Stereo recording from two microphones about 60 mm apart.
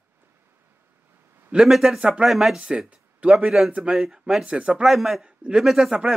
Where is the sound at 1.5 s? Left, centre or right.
Centre.